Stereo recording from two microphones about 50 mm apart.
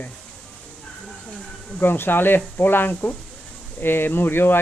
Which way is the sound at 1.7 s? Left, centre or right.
Left.